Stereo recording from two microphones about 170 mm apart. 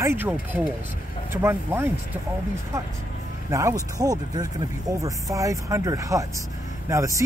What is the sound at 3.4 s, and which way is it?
Speech, 15° right (ahead or behind).